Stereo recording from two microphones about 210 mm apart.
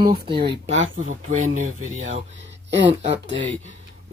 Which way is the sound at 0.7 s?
70° right (ahead or behind).